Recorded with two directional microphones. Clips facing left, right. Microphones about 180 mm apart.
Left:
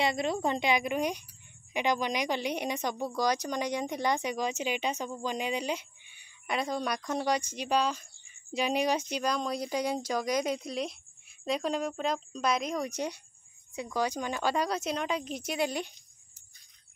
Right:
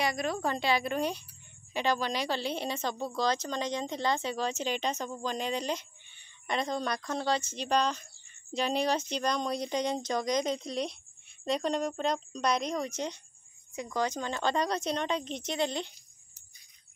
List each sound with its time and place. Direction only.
0.0 s a woman's voice: 25° left (ahead or behind); by 12.8 s 5° left (ahead or behind)
12.8 s speech: 15° left (ahead or behind)